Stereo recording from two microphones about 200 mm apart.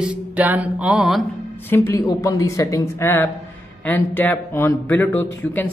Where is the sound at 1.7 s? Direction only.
10° left (ahead or behind).